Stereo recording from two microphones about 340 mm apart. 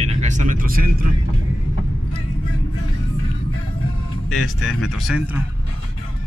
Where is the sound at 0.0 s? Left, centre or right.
Centre.